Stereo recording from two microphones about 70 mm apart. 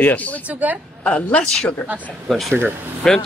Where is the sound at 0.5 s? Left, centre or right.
Right.